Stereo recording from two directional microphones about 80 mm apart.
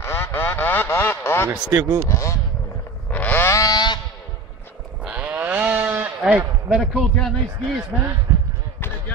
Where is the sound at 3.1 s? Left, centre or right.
Left.